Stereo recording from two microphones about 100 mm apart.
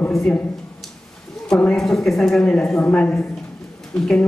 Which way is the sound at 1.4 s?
10° left (ahead or behind).